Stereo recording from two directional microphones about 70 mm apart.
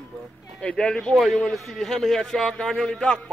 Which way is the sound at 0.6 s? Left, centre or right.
Centre.